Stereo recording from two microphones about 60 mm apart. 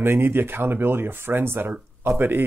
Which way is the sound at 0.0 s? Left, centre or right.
Right.